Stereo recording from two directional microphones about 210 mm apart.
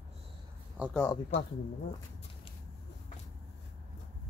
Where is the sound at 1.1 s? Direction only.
30° left (ahead or behind).